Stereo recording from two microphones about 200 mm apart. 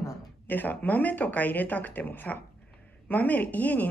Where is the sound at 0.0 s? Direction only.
10° left (ahead or behind).